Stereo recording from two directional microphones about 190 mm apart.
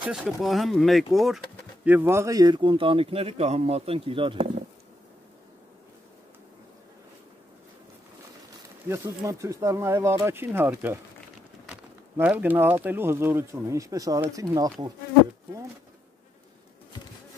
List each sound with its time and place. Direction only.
0.0 s speech: 5° right (ahead or behind)
1.9 s a man's voice: 10° right (ahead or behind); by 4.5 s 30° right (ahead or behind)
8.8 s speech: 15° right (ahead or behind)